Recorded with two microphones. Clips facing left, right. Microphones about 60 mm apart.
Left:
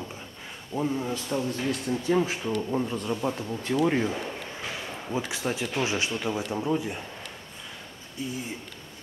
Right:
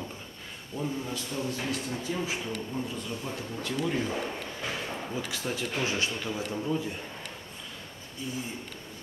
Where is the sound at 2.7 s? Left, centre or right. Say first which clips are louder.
Left 6 dB; left.